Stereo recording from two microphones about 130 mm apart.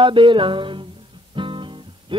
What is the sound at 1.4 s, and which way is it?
Guitar, 40° right (ahead or behind).